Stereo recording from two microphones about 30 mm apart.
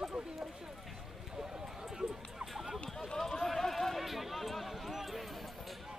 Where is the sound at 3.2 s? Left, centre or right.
Centre.